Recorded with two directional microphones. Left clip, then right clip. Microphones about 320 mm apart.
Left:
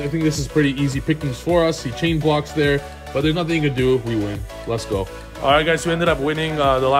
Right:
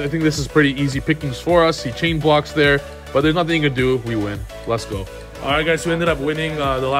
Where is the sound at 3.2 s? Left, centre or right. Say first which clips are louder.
Right 3 dB; right.